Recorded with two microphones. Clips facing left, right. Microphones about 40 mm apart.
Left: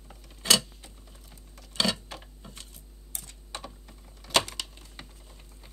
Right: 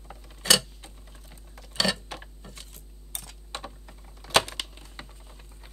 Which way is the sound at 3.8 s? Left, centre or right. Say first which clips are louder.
Right 2 dB; centre.